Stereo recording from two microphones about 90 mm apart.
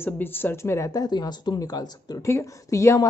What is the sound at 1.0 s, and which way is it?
Speech, 50° left (ahead or behind).